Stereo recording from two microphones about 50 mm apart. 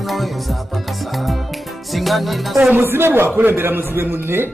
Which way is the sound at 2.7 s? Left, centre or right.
Right.